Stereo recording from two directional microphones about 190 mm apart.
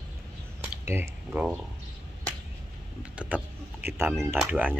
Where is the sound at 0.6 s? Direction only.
10° right (ahead or behind).